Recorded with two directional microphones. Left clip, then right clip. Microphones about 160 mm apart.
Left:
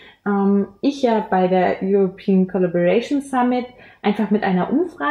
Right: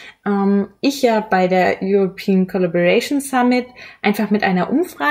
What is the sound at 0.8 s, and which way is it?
Speech, 25° right (ahead or behind).